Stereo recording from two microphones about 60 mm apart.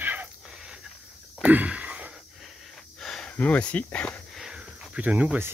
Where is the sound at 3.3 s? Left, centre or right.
Left.